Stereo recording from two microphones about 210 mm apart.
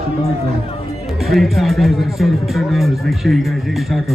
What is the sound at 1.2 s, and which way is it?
Speech, centre (ahead or behind).